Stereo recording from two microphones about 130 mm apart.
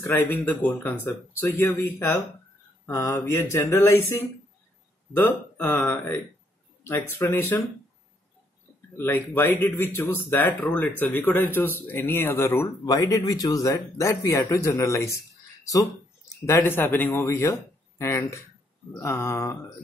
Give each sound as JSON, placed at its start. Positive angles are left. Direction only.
{"t": 0.0, "sound": "speech", "side_deg": 20}
{"t": 8.9, "sound": "speech", "side_deg": 20}
{"t": 16.4, "sound": "speech", "side_deg": 20}